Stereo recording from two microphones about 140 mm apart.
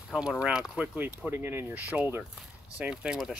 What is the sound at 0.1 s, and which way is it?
Speech, 5° right (ahead or behind).